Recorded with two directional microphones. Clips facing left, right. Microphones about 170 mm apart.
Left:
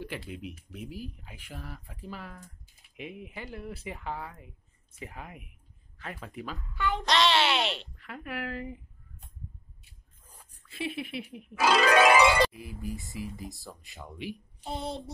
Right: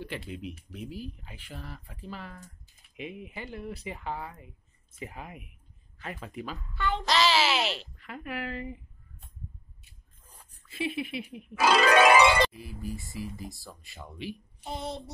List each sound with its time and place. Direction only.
0.0 s speech: 10° left (ahead or behind)
6.7 s speech: 10° left (ahead or behind)
7.1 s speech: centre (ahead or behind)
10.7 s speech: centre (ahead or behind)
11.5 s speech: 40° right (ahead or behind)
12.4 s speech: 15° left (ahead or behind)
14.6 s child singing: 30° left (ahead or behind)